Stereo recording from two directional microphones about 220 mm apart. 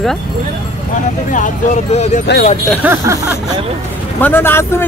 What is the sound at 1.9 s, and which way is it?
Speech, 30° left (ahead or behind).